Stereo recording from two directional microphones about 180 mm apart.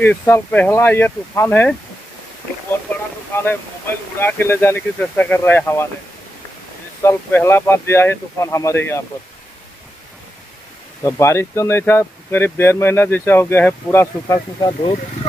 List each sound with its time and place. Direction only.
0.2 s speech: 10° left (ahead or behind)
3.4 s speech: 10° left (ahead or behind)
7.0 s speech: 15° left (ahead or behind)
11.1 s speech: 15° left (ahead or behind)